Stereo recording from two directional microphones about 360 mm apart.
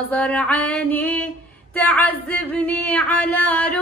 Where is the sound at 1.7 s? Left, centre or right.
Centre.